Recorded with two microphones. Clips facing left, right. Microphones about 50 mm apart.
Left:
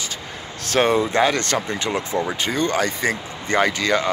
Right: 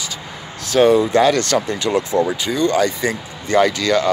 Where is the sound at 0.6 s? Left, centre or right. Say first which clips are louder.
Right 5 dB; left.